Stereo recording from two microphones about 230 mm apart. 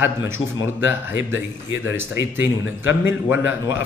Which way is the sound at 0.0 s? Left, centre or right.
Centre.